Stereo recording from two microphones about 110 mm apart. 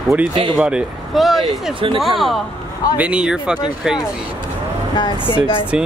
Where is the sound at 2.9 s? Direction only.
10° right (ahead or behind).